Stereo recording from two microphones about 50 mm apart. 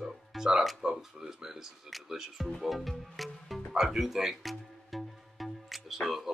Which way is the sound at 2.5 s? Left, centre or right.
Centre.